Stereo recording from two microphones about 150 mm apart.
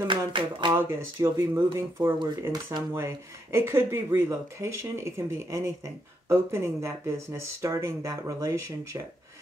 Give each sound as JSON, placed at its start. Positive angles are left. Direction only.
{"t": 0.1, "sound": "speech", "side_deg": -30}
{"t": 0.7, "sound": "speech", "side_deg": -15}